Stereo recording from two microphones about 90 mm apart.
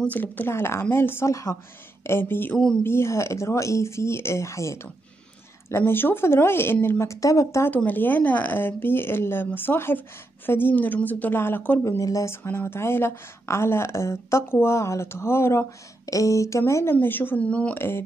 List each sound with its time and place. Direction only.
0.0 s speech: 20° left (ahead or behind)
2.5 s speech: 10° left (ahead or behind)
2.8 s speech: 30° left (ahead or behind)
7.6 s speech: 20° left (ahead or behind)
12.0 s speech: 40° left (ahead or behind)
12.4 s speech: 25° left (ahead or behind)
16.9 s speech: 20° left (ahead or behind)
17.7 s speech: 25° left (ahead or behind)